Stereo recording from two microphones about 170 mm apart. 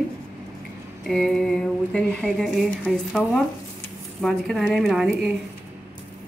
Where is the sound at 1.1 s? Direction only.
5° left (ahead or behind).